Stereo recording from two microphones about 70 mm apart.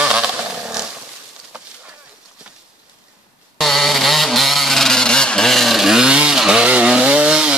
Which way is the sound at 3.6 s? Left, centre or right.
Centre.